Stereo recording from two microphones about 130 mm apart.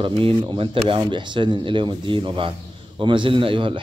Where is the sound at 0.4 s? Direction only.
40° right (ahead or behind).